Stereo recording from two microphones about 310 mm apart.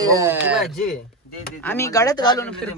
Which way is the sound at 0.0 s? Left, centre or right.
Centre.